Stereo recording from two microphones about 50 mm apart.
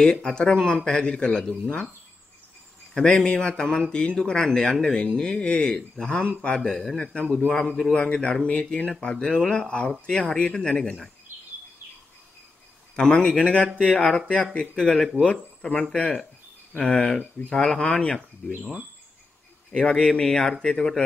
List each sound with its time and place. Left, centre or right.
0.2 s speech: centre
2.9 s speech: centre
12.9 s speech: centre
17.7 s speech: left
18.6 s speech: centre
19.7 s speech: centre